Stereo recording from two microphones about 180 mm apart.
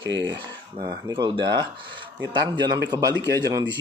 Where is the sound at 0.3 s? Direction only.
20° right (ahead or behind).